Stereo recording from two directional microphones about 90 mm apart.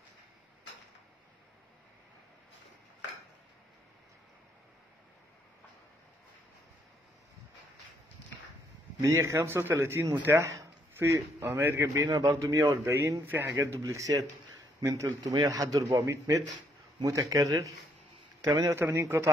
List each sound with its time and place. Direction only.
9.0 s a man's voice: 30° right (ahead or behind)
18.7 s speech: 30° right (ahead or behind)